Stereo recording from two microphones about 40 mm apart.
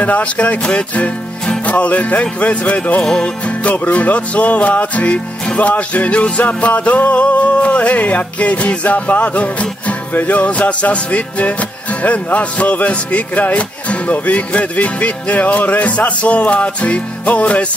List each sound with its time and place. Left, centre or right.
0.0 s music: left
3.0 s music: centre
3.4 s music: left